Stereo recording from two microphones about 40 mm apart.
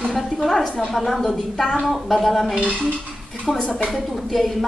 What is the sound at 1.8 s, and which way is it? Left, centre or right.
A woman's voice, centre.